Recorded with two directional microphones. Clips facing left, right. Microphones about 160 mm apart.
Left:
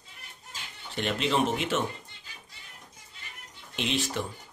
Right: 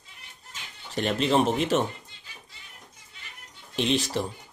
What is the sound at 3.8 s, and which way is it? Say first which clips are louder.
Speech: right 5 dB; 35° right (ahead or behind).